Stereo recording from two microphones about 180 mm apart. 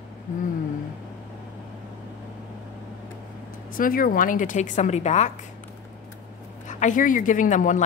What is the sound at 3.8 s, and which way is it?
A woman's voice, 55° left (ahead or behind).